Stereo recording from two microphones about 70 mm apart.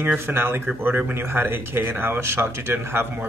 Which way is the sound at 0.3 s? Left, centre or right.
Right.